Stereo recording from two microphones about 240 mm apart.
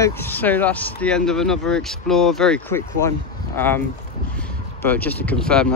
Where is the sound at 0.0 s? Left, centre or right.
Centre.